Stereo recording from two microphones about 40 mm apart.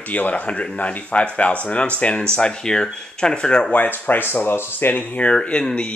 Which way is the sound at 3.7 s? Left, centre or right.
Left.